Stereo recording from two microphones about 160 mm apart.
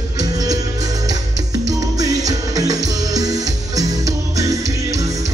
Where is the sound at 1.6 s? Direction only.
20° right (ahead or behind).